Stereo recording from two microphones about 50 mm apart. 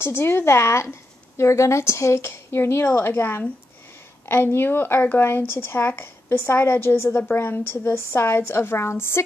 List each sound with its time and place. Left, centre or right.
0.0 s a woman's voice: left
2.2 s speech: left
7.9 s a woman's voice: left